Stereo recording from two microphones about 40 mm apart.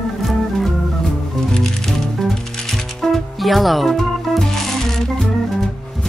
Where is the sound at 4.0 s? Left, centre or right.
Centre.